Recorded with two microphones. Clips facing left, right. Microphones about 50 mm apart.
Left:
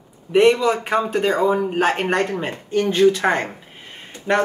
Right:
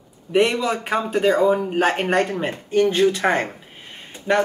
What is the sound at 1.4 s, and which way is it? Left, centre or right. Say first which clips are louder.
Speech: even; centre.